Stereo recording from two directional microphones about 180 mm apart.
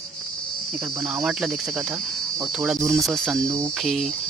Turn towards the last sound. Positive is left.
turn(degrees=0)  # may be behind; listen again after turning